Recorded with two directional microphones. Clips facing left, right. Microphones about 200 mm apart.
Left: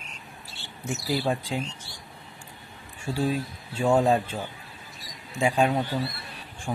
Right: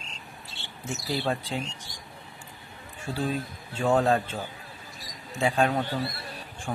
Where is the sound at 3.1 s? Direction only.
10° left (ahead or behind).